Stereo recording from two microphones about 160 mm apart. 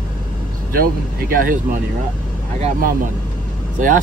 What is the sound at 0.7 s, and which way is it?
Speech, 65° right (ahead or behind).